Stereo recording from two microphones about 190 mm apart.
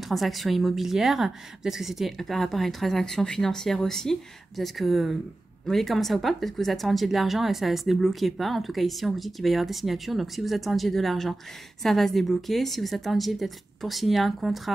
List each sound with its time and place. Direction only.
0.0 s speech: centre (ahead or behind)